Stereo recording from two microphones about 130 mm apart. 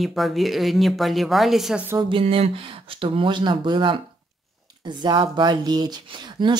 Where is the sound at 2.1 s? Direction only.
50° right (ahead or behind).